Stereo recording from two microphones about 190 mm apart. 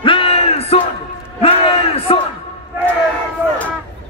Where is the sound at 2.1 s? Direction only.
30° left (ahead or behind).